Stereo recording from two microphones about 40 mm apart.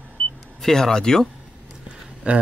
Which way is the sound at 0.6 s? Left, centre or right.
Centre.